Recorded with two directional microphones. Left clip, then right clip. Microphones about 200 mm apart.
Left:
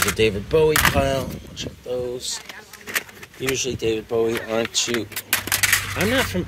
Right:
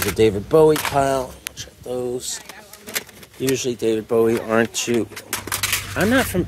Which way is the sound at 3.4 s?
40° right (ahead or behind).